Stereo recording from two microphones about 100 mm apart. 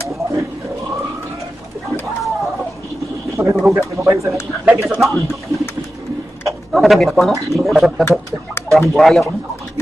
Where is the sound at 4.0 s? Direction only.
30° right (ahead or behind).